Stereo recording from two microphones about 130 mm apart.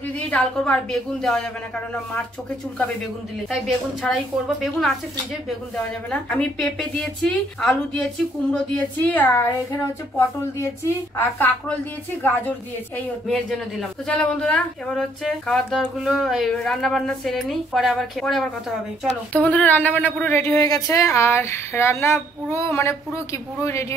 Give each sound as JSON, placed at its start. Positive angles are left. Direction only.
{"t": 0.3, "sound": "speech", "side_deg": 10}
{"t": 4.1, "sound": "a woman's voice", "side_deg": 10}
{"t": 6.0, "sound": "a woman's voice", "side_deg": 10}
{"t": 13.3, "sound": "a woman's voice", "side_deg": 0}